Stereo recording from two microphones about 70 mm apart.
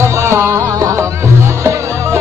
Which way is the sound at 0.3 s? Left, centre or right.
Right.